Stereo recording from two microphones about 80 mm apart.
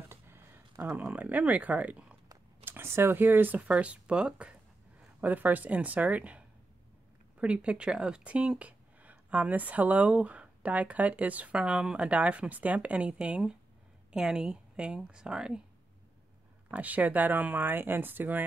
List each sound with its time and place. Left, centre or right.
0.1 s a sound: right
1.0 s speech: right
2.6 s speech: right; by 15.6 s centre
16.7 s speech: centre